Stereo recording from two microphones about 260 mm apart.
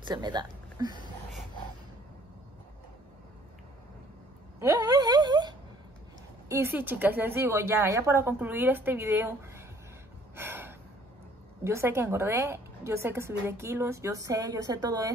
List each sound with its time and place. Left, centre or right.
0.0 s speech: centre
4.6 s a sound: centre
6.5 s a woman's voice: centre
10.3 s gasp: centre
11.6 s a woman's voice: centre